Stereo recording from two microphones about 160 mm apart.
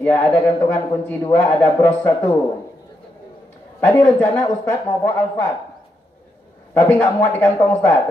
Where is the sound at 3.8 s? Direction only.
15° left (ahead or behind).